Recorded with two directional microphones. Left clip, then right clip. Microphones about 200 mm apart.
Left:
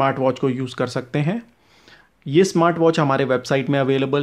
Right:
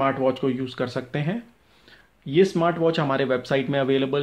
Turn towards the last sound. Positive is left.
turn(degrees=40)  # may be behind; listen again after turning